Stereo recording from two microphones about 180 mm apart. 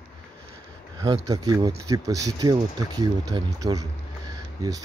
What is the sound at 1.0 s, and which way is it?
Speech, 20° right (ahead or behind).